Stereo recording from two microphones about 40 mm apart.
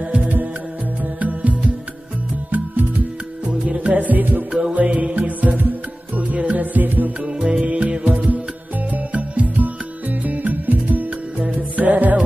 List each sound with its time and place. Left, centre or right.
0.0 s music: right
3.4 s music: right
4.7 s music: right
7.2 s music: right
7.6 s music: right
11.3 s music: right
11.7 s music: right